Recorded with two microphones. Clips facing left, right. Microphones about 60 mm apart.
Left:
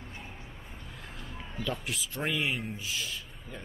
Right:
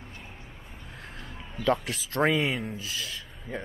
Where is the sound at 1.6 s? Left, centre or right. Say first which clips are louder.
Right 8 dB; right.